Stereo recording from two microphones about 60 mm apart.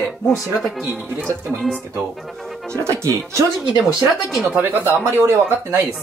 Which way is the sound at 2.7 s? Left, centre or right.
Right.